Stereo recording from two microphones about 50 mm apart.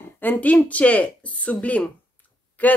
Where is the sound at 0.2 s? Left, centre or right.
Left.